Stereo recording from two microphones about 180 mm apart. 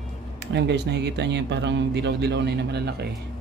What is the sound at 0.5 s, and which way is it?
Speech, 75° right (ahead or behind).